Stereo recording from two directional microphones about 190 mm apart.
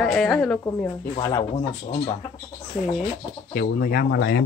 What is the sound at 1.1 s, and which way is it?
Speech, 20° left (ahead or behind).